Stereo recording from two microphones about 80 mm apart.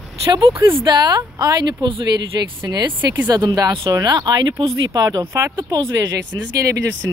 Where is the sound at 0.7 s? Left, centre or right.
Right.